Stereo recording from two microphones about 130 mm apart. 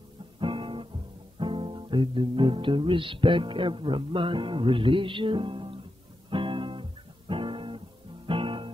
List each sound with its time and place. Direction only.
0.4 s guitar: 40° right (ahead or behind)
1.4 s music: 40° right (ahead or behind)
6.3 s guitar: 40° right (ahead or behind)
8.3 s music: 40° right (ahead or behind)